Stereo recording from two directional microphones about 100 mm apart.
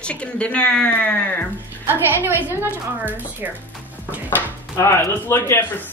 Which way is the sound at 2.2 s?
20° right (ahead or behind).